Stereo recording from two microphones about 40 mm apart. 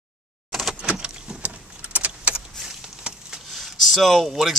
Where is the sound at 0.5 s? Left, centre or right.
Centre.